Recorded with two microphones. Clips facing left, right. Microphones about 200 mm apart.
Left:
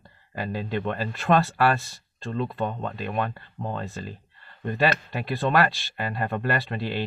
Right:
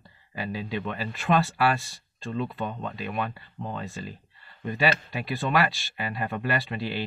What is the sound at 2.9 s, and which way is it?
Speech, 50° left (ahead or behind).